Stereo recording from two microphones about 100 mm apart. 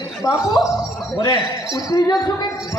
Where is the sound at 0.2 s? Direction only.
35° left (ahead or behind).